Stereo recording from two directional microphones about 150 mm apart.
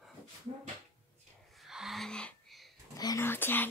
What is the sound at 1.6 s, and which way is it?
Music, centre (ahead or behind).